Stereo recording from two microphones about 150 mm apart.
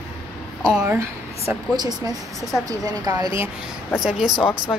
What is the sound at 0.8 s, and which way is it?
Speech, 20° right (ahead or behind).